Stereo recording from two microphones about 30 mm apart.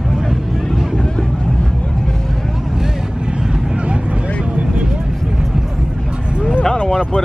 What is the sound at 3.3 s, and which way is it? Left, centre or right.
Vehicle, right.